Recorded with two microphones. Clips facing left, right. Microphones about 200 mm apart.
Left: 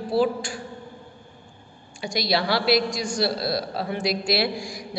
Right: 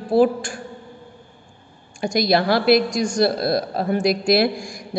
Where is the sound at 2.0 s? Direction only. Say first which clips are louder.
Right 6 dB; 50° right (ahead or behind).